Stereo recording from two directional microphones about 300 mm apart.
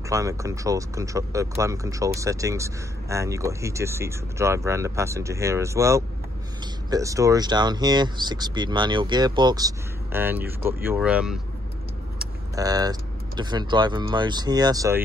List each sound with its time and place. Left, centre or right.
0.1 s speech: centre
12.2 s vehicle: centre
13.4 s speech: centre